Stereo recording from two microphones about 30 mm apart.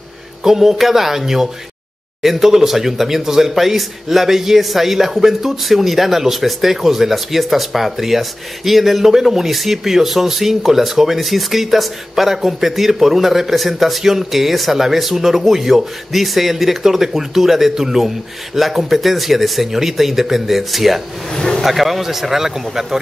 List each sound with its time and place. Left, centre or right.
0.4 s speech: centre
21.4 s a sound: left
21.6 s speech: centre